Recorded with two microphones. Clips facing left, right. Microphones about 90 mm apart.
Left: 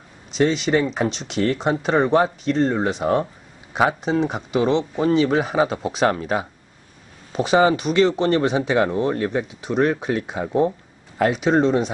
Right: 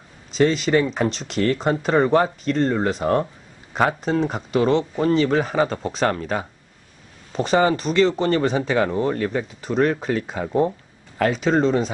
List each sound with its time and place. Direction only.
0.4 s speech: centre (ahead or behind); by 6.4 s 15° left (ahead or behind)
7.3 s speech: 5° left (ahead or behind)